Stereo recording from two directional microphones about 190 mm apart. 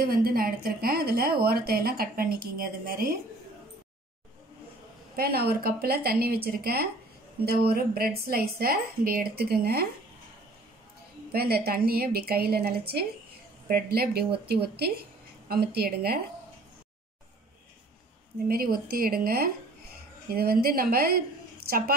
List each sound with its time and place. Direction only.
0.0 s a woman's voice: 50° right (ahead or behind)
5.1 s a woman's voice: 55° right (ahead or behind)
11.3 s a woman's voice: 55° right (ahead or behind)
18.5 s a woman's voice: 50° right (ahead or behind)